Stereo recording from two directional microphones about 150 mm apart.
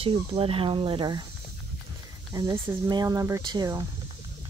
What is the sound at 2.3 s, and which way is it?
Speech, 20° right (ahead or behind).